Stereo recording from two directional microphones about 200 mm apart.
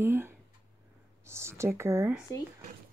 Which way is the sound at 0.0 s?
10° right (ahead or behind).